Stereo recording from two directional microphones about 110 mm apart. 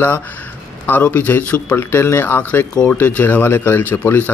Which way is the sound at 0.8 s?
15° left (ahead or behind).